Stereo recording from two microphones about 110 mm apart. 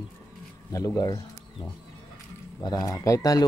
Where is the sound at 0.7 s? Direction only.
30° left (ahead or behind).